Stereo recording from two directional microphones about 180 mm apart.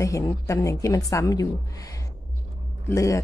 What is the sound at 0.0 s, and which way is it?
A woman's voice, 20° left (ahead or behind).